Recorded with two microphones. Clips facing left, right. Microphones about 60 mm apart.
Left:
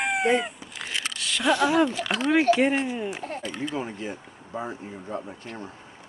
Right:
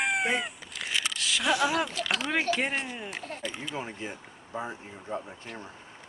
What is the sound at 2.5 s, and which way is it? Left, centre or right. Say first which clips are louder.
Speech: left 8 dB; left.